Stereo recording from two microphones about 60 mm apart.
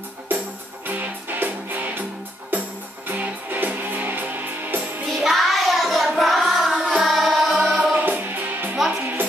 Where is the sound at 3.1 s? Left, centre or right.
Right.